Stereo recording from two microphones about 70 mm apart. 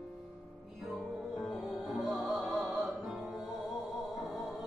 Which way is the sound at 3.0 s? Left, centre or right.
Centre.